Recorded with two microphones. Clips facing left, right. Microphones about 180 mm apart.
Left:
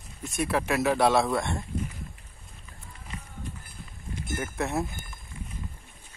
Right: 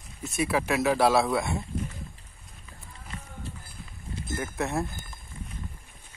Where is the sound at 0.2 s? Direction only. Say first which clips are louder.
Right 1 dB; centre (ahead or behind).